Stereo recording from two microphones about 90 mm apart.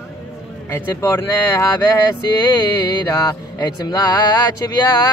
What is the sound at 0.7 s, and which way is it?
Speech, 35° left (ahead or behind).